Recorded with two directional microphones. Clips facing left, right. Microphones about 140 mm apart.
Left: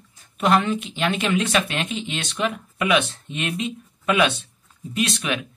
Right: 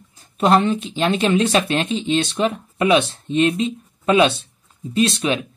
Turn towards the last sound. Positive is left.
turn(degrees=-30)  # may be behind; listen again after turning